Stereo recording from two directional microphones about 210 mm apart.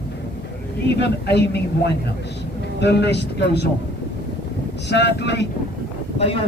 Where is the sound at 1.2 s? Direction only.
50° left (ahead or behind).